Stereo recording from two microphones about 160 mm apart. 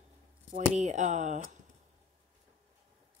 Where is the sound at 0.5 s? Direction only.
45° right (ahead or behind).